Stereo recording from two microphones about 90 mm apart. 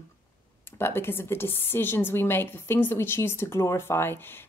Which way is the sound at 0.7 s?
25° left (ahead or behind).